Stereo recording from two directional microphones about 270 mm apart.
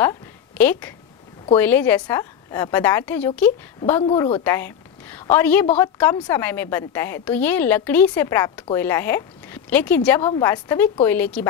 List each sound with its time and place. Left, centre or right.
0.6 s a woman's voice: centre
4.0 s speech: centre
4.4 s a woman's voice: centre